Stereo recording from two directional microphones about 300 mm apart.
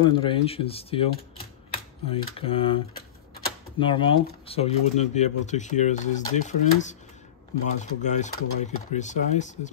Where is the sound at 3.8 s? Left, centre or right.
Centre.